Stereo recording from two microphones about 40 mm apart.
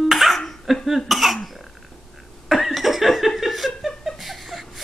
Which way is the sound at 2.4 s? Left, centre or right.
Centre.